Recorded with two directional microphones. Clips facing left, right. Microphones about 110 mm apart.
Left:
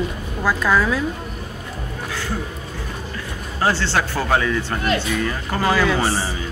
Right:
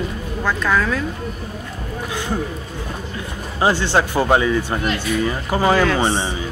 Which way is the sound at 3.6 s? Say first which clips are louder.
Right 3 dB; 15° right (ahead or behind).